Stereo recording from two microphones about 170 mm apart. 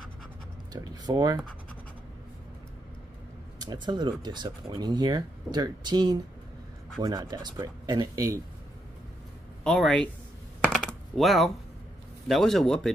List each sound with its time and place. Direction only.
0.7 s speech: 20° right (ahead or behind)
3.5 s speech: 25° right (ahead or behind)
9.6 s speech: 5° left (ahead or behind)
10.6 s a sound: 5° left (ahead or behind)
12.3 s speech: centre (ahead or behind)